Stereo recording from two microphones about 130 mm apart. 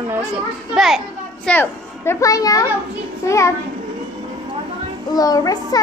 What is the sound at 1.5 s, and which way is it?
A child's voice, 20° left (ahead or behind).